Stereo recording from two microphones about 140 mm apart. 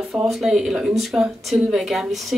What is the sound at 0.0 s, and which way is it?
A woman's voice, centre (ahead or behind).